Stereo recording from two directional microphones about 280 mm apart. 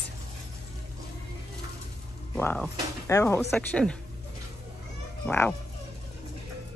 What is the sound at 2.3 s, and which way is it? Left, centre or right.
Speech, centre.